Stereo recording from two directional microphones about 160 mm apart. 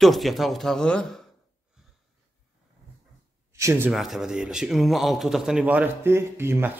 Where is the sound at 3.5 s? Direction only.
15° right (ahead or behind).